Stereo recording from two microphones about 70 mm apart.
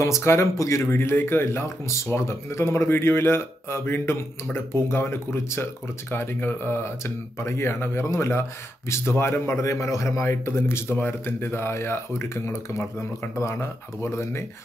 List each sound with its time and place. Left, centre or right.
0.0 s speech: left